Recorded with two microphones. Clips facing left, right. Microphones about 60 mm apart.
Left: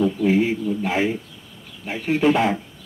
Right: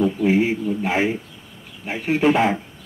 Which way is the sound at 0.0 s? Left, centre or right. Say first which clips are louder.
Right 1 dB; right.